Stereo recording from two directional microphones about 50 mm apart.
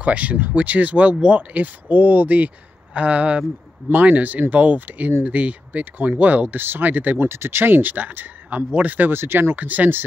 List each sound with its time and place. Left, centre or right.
0.0 s speech: right
7.2 s speech: right
9.1 s speech: right
9.6 s speech: right